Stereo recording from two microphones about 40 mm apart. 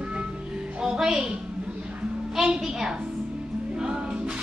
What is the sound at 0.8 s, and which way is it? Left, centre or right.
Music, centre.